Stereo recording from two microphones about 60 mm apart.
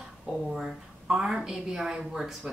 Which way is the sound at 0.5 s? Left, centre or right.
Centre.